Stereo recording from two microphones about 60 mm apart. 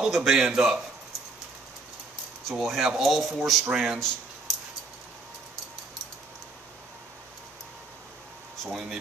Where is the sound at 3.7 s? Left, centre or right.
Centre.